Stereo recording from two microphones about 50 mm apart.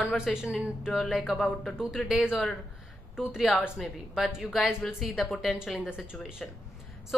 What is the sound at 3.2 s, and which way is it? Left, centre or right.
Speech, centre.